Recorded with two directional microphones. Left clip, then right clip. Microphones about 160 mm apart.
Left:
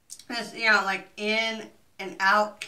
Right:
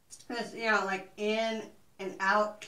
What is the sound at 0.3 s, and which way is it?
Speech, 15° left (ahead or behind).